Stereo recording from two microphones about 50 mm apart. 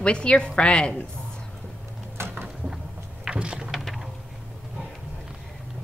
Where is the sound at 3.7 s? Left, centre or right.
Centre.